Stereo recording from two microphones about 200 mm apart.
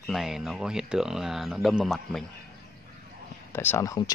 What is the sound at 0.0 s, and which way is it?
Speech, centre (ahead or behind).